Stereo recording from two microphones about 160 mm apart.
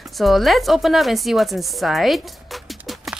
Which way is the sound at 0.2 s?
Centre (ahead or behind).